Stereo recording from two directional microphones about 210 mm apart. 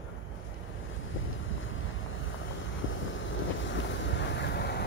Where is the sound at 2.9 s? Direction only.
65° left (ahead or behind).